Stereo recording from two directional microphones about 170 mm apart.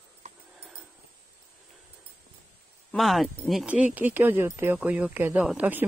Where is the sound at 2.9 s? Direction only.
Centre (ahead or behind).